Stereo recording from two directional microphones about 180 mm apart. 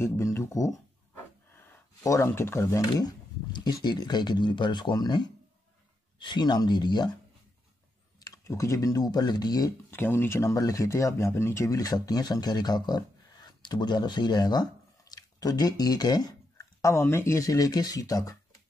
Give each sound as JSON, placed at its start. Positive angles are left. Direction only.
{"t": 0.0, "sound": "a sound", "side_deg": 15}
{"t": 1.7, "sound": "speech", "side_deg": 15}
{"t": 8.2, "sound": "speech", "side_deg": 20}